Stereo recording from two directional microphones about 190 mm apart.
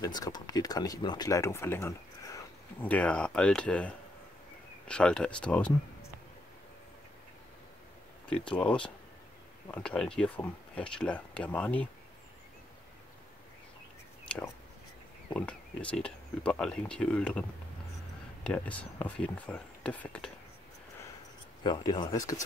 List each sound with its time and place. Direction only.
0.0 s speech: 20° left (ahead or behind)
8.3 s speech: 5° left (ahead or behind)
15.2 s speech: 5° left (ahead or behind)
21.6 s speech: 20° left (ahead or behind)